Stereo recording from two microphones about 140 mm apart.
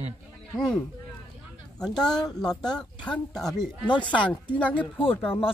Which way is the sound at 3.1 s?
5° left (ahead or behind).